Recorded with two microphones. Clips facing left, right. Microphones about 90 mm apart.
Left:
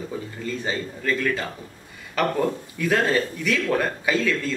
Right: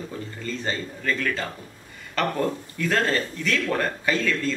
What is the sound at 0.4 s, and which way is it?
Speech, 5° left (ahead or behind).